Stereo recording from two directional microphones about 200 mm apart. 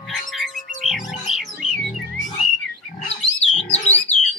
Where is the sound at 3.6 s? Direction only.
35° left (ahead or behind).